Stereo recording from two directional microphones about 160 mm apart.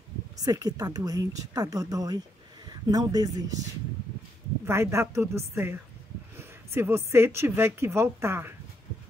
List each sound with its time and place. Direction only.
0.4 s speech: 25° right (ahead or behind)
4.6 s speech: 15° right (ahead or behind)